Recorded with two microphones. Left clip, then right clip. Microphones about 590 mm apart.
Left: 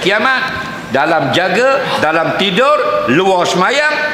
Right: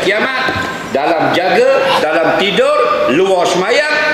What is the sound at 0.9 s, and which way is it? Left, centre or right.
A man's voice, left.